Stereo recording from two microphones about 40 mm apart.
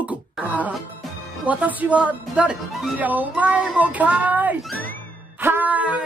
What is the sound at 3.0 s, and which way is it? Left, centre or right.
Speech, right.